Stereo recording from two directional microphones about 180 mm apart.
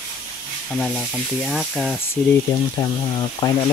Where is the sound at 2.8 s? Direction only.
25° left (ahead or behind).